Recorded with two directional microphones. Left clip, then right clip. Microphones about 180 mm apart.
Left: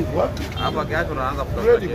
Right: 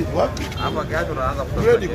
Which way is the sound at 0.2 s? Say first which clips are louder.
Right 2 dB; 40° right (ahead or behind).